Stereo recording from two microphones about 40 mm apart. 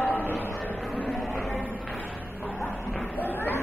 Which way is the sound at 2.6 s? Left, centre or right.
Left.